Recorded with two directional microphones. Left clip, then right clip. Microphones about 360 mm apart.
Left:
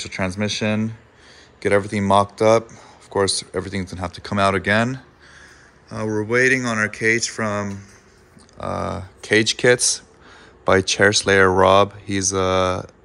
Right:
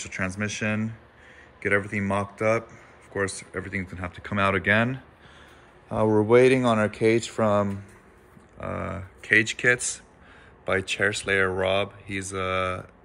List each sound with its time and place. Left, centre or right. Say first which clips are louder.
0.2 s speech: left 6 dB; centre
5.9 s speech: right 3 dB; centre
8.5 s speech: left 7 dB; centre
11.3 s speech: left 9 dB; left
11.6 s speech: left 11 dB; left